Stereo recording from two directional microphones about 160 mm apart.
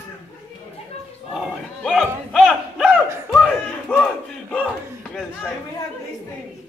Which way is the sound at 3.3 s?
5° left (ahead or behind).